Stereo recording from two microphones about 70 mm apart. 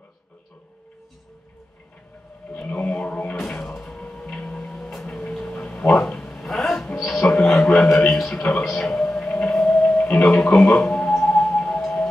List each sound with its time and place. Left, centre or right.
2.5 s music: centre
5.2 s a sound: centre
8.6 s music: centre